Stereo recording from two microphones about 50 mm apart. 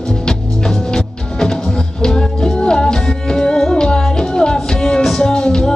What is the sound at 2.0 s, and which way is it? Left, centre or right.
Music, centre.